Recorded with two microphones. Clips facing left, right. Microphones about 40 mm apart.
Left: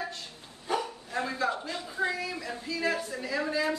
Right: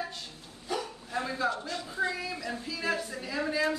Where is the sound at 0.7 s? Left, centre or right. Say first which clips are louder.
Left 3 dB; left.